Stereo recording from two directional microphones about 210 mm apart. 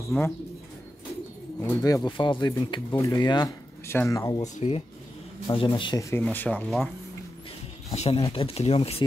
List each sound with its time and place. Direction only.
0.1 s speech: 10° left (ahead or behind)
1.6 s speech: 15° left (ahead or behind)
4.6 s speech: 30° left (ahead or behind); by 6.9 s 5° left (ahead or behind)
7.9 s speech: 30° left (ahead or behind)